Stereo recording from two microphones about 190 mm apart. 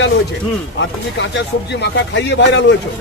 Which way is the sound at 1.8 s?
65° left (ahead or behind).